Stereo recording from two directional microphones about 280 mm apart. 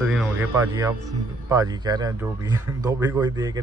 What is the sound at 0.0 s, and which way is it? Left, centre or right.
Speech, centre.